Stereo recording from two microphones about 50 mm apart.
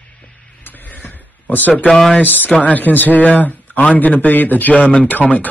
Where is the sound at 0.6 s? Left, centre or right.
Left.